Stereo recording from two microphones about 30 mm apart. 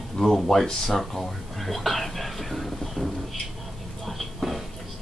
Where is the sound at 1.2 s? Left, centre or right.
Centre.